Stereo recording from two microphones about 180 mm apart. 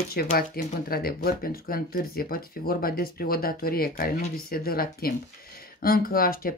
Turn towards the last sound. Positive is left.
turn(degrees=55)  # may be behind; listen again after turning